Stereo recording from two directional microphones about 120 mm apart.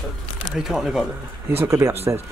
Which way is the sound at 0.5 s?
5° right (ahead or behind).